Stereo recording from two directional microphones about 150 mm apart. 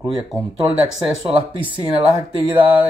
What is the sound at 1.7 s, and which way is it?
Speech, 30° right (ahead or behind).